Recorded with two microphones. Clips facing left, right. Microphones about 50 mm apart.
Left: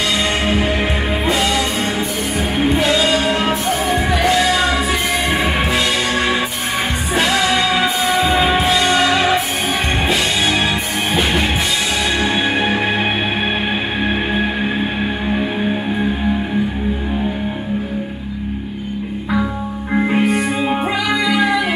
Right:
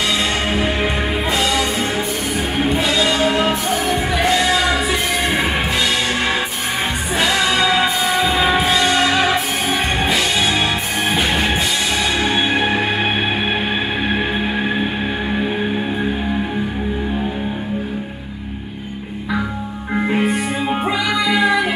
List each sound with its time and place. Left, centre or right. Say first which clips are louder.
1.3 s music: left 1 dB; centre
7.2 s music: left 1 dB; centre
12.2 s music: even; centre
14.0 s music: left 1 dB; centre
19.9 s music: left 2 dB; centre